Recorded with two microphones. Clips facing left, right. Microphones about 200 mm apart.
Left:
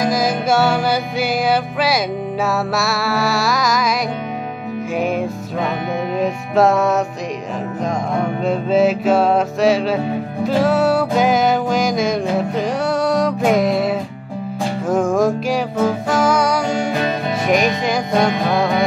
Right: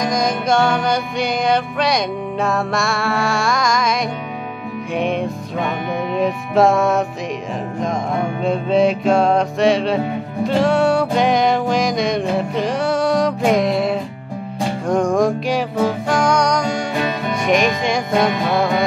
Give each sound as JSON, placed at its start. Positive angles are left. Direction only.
{"t": 0.0, "sound": "music", "side_deg": 5}
{"t": 4.9, "sound": "music", "side_deg": 0}
{"t": 8.5, "sound": "music", "side_deg": 0}